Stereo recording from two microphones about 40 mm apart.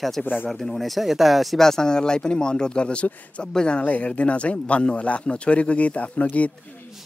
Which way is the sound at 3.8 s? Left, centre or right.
Left.